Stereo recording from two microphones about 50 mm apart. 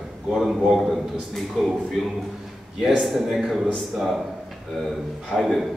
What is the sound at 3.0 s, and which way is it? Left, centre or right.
Speech, centre.